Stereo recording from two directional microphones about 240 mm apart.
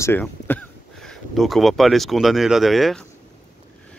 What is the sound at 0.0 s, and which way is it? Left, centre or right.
Speech, centre.